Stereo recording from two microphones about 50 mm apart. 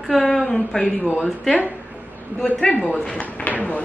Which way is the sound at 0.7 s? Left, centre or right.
Left.